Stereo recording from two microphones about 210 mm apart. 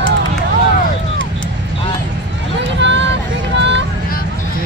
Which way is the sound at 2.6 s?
55° right (ahead or behind).